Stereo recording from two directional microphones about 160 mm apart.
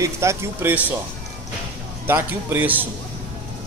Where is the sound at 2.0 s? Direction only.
10° right (ahead or behind).